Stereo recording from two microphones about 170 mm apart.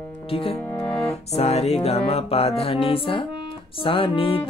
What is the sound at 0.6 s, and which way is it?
Music, 15° left (ahead or behind).